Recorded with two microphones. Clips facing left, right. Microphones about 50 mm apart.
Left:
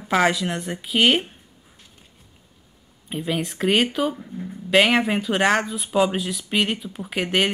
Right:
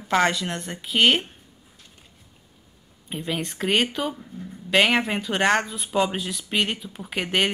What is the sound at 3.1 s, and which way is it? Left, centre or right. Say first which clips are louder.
Speech: left 3 dB; centre.